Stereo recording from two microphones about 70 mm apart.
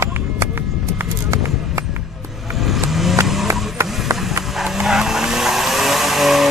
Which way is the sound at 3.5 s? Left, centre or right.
Right.